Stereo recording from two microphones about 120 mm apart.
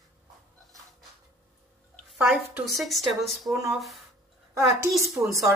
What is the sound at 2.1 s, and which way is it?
Speech, 5° right (ahead or behind).